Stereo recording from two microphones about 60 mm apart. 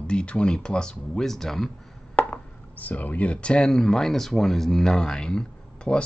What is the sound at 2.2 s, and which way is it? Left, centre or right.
Speech, left.